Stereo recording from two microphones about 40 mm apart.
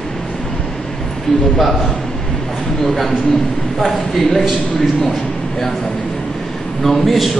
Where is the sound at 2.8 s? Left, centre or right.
Centre.